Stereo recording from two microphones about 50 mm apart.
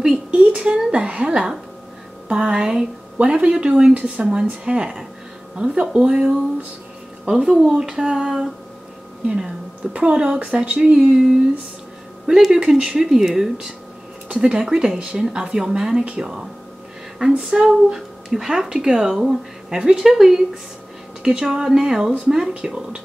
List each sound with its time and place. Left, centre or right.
0.3 s a sound: right
2.2 s speech: centre
3.2 s speech: right
3.9 s speech: right
4.5 s speech: centre
7.2 s speech: centre
9.9 s speech: right
12.3 s speech: centre
12.5 s speech: centre
13.0 s speech: centre